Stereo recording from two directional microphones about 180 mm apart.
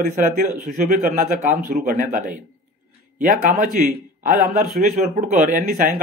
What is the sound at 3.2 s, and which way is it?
Speech, 50° right (ahead or behind).